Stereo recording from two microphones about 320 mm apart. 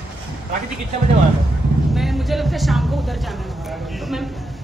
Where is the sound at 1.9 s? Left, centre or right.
Centre.